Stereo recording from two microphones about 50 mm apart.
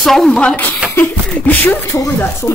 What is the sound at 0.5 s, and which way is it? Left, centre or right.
A woman's voice, left.